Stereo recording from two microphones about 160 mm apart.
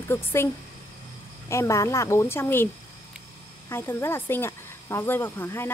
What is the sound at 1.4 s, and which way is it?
Speech, 20° left (ahead or behind).